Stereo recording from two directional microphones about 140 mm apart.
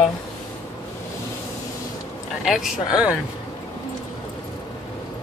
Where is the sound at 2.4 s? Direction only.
5° right (ahead or behind).